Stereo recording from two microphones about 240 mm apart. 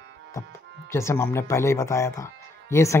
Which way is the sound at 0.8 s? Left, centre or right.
Centre.